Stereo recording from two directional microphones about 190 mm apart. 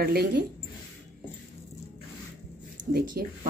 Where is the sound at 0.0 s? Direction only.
55° right (ahead or behind).